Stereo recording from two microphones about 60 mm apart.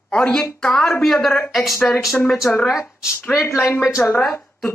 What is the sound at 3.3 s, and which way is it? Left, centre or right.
Speech, left.